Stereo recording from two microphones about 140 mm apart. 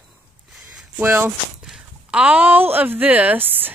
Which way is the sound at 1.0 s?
20° right (ahead or behind).